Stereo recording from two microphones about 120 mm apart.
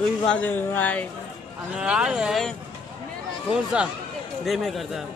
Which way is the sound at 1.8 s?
5° right (ahead or behind).